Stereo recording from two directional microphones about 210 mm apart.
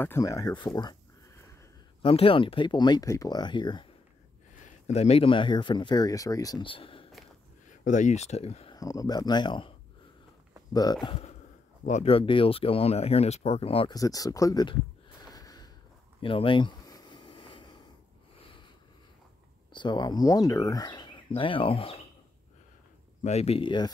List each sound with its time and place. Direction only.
0.0 s speech: 15° left (ahead or behind)
2.0 s speech: 25° left (ahead or behind)
7.8 s speech: 35° left (ahead or behind)
8.7 s speech: 15° left (ahead or behind)
10.7 s speech: 20° left (ahead or behind)
15.3 s a sound: 20° left (ahead or behind)
19.7 s speech: 20° left (ahead or behind)
23.2 s speech: 30° left (ahead or behind)